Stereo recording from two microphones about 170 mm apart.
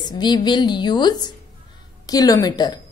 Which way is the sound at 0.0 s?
25° left (ahead or behind).